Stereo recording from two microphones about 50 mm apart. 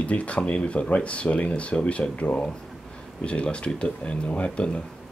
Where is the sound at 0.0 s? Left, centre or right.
Left.